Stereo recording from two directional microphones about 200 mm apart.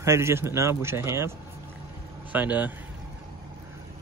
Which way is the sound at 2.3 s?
10° right (ahead or behind).